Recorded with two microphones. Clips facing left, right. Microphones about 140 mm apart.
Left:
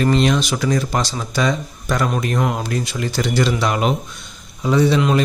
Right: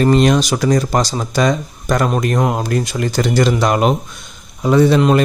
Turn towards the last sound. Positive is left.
turn(degrees=-50)  # may be behind; listen again after turning